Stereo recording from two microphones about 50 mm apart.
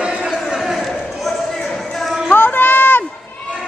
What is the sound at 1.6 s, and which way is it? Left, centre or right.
Music, centre.